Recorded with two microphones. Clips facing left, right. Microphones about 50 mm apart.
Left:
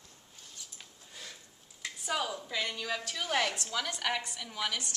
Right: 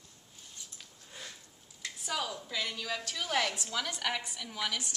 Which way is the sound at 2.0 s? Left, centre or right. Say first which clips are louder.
Left 2 dB; centre.